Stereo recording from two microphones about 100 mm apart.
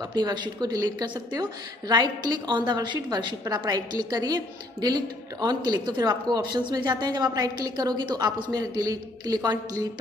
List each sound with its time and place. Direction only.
0.0 s a woman's voice: 45° right (ahead or behind)